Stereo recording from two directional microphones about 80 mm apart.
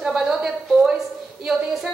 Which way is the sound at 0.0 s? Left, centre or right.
Centre.